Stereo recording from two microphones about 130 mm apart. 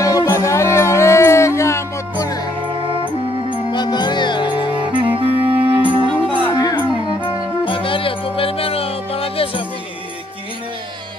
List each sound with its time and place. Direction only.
0.0 s music: 25° left (ahead or behind)
2.6 s music: 40° right (ahead or behind)
3.7 s music: 35° left (ahead or behind)
5.0 s clarinet: 45° right (ahead or behind)
5.9 s music: 40° right (ahead or behind)
6.4 s music: 35° left (ahead or behind)